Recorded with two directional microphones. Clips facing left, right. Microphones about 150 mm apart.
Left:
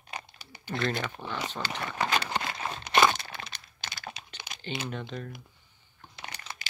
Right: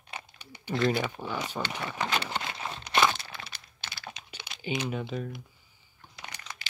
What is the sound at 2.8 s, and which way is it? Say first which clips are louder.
Crunch: left 2 dB; 45° left (ahead or behind).